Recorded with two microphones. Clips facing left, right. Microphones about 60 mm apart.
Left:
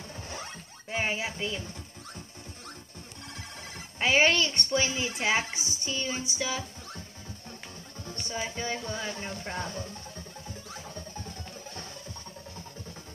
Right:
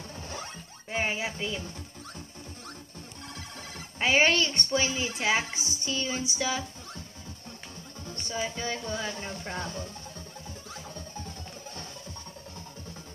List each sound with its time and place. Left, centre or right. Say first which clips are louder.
0.8 s a woman's voice: even; centre
4.0 s a woman's voice: even; centre
8.3 s speech: right 1 dB; centre